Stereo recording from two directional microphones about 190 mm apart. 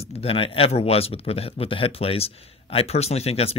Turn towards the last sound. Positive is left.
turn(degrees=30)  # may be behind; listen again after turning